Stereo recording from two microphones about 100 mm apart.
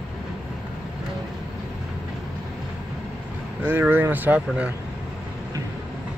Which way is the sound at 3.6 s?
20° right (ahead or behind).